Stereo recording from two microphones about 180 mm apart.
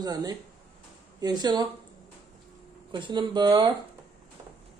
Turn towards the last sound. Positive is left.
turn(degrees=-25)  # may be behind; listen again after turning